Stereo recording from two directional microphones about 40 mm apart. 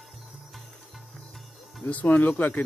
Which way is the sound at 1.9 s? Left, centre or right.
Left.